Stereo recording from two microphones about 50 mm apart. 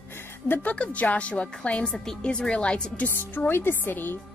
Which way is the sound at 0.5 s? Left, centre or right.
Left.